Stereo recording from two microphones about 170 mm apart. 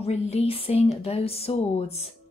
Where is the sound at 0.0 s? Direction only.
35° left (ahead or behind).